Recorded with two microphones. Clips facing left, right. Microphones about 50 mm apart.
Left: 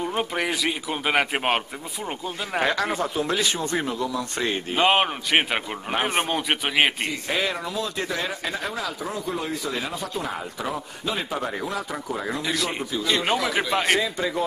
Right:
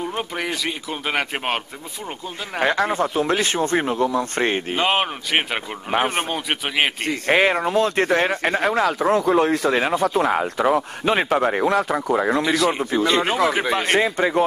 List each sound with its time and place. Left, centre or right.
0.0 s a man's voice: centre
2.7 s speech: right
4.7 s a man's voice: centre
7.2 s speech: right
12.5 s a man's voice: centre
12.9 s speech: right
13.5 s a man's voice: centre
13.9 s speech: right